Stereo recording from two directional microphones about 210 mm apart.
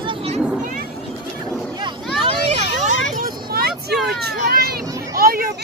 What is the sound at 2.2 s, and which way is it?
Vehicle, 30° right (ahead or behind).